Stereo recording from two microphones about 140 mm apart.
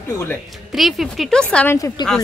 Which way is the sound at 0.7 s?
Centre (ahead or behind).